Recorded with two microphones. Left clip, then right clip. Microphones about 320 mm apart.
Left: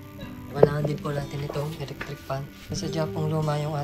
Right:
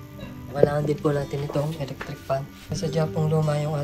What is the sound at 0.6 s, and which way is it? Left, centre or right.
Speech, centre.